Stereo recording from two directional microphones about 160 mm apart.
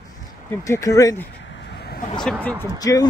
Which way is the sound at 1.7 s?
85° left.